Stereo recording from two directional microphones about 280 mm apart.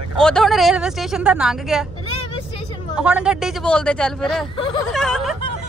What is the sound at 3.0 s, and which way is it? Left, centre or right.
Speech, centre.